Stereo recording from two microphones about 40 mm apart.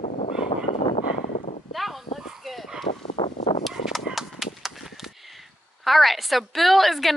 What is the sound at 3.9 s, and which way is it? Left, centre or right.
Horse, centre.